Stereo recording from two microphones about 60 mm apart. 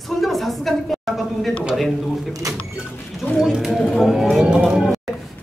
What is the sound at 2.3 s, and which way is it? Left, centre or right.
Speech, right.